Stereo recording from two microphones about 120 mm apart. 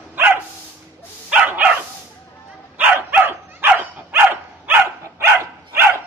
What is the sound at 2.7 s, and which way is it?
Dog, 15° right (ahead or behind).